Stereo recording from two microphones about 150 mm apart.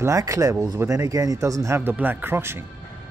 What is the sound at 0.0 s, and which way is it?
Speech, 20° right (ahead or behind).